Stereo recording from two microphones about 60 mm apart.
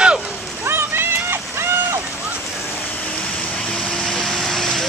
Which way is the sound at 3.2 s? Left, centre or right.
Centre.